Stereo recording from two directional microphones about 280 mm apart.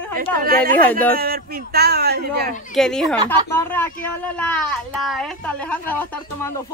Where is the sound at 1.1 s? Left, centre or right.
Right.